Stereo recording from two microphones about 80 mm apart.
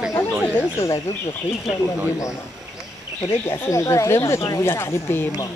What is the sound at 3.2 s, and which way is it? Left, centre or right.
Speech, left.